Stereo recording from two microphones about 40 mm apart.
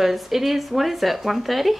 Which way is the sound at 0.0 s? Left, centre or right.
Centre.